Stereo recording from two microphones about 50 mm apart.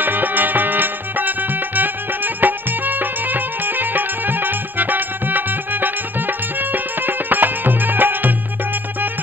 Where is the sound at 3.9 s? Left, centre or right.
Right.